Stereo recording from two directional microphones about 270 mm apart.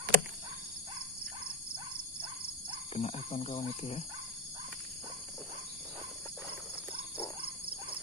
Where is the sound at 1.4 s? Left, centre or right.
Centre.